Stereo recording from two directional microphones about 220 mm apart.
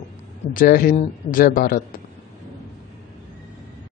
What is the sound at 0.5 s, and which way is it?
A man's voice, 40° left (ahead or behind).